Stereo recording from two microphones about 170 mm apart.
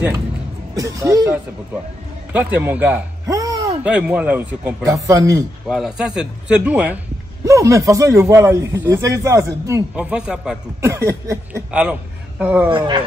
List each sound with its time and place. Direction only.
0.7 s a man's voice: 20° right (ahead or behind)
2.3 s a man's voice: 10° right (ahead or behind)
3.3 s a sound: 20° right (ahead or behind)
3.8 s a man's voice: 5° right (ahead or behind)
4.8 s a man's voice: 20° right (ahead or behind)
5.7 s speech: 5° right (ahead or behind)
7.4 s a man's voice: 20° right (ahead or behind)
9.9 s speech: 5° right (ahead or behind)
10.8 s a man's voice: 15° right (ahead or behind)
12.6 s a man's voice: 30° right (ahead or behind)